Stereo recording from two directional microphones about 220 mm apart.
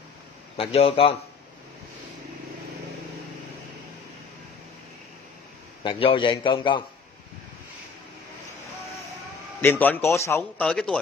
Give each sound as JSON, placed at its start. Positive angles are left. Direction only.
{"t": 0.6, "sound": "a man's voice", "side_deg": 25}
{"t": 5.9, "sound": "a man's voice", "side_deg": 25}
{"t": 9.6, "sound": "speech", "side_deg": 10}